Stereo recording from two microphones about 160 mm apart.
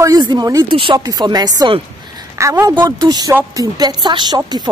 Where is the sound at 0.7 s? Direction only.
35° right (ahead or behind).